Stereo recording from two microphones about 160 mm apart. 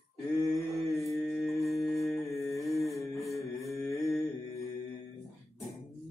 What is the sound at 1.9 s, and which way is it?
Music, 20° left (ahead or behind).